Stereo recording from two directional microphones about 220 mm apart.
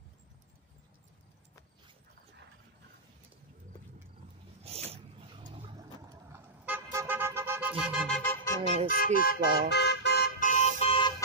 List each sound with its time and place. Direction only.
4.6 s a sound: 25° right (ahead or behind)
6.3 s vehicle: 10° right (ahead or behind)
8.2 s music: 10° left (ahead or behind)
8.9 s car alarm: 40° left (ahead or behind); by 11.1 s 25° left (ahead or behind)